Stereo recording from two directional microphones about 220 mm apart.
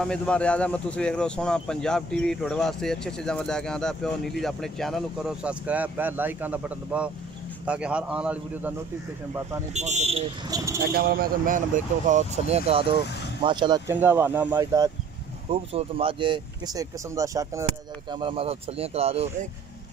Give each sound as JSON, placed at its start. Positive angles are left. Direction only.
{"t": 0.0, "sound": "speech", "side_deg": 5}
{"t": 9.8, "sound": "speech", "side_deg": -30}
{"t": 10.5, "sound": "speech", "side_deg": -15}
{"t": 11.0, "sound": "speech", "side_deg": -45}
{"t": 13.9, "sound": "speech", "side_deg": -10}
{"t": 15.5, "sound": "speech", "side_deg": -25}